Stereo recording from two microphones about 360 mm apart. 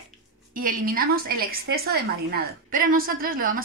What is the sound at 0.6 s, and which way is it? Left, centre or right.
A woman's voice, right.